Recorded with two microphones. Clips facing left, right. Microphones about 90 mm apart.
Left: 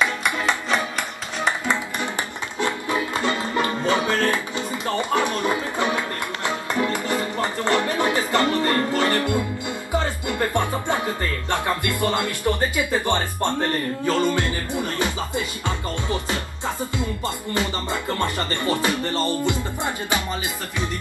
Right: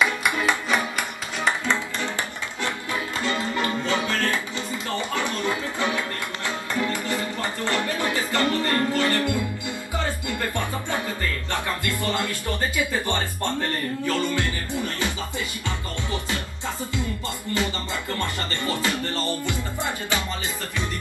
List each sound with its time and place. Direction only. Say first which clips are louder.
2.6 s music: left 5 dB; 20° left (ahead or behind)
9.9 s speech: left 5 dB; 20° left (ahead or behind)
14.0 s music: left 4 dB; 20° left (ahead or behind)
18.2 s music: left 4 dB; 20° left (ahead or behind)